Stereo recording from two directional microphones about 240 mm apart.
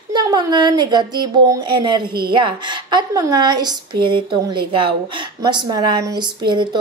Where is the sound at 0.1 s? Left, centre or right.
Centre.